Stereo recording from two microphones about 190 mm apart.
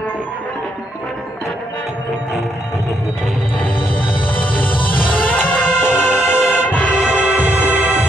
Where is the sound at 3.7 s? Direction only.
25° left (ahead or behind).